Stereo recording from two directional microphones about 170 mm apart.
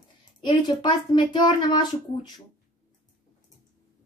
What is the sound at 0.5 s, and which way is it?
A woman's voice, 30° left (ahead or behind).